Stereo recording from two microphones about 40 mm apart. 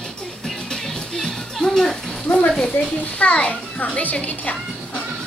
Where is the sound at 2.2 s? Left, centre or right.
Left.